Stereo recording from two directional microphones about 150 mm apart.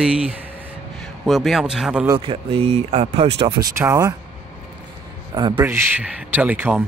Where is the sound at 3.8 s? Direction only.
20° right (ahead or behind).